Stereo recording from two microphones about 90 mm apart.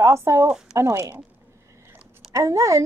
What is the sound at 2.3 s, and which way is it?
Speech, 40° right (ahead or behind).